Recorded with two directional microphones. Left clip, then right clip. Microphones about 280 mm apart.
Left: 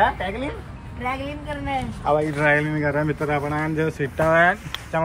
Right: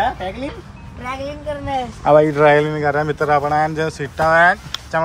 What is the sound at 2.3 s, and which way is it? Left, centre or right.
A man's voice, centre.